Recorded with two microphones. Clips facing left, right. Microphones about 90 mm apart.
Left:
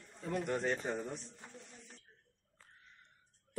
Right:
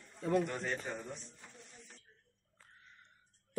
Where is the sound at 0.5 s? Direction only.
20° left (ahead or behind).